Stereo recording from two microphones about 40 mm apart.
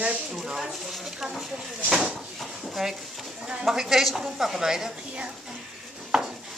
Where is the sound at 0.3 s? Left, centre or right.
Centre.